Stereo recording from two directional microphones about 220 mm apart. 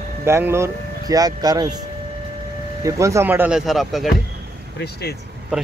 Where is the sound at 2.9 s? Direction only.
15° right (ahead or behind).